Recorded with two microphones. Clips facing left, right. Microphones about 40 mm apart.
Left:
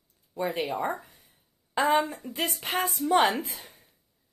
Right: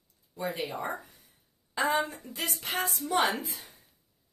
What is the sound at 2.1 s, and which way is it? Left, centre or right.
Speech, left.